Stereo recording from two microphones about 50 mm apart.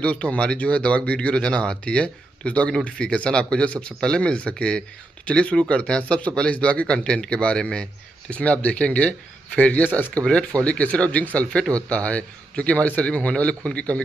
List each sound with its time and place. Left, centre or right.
0.0 s speech: left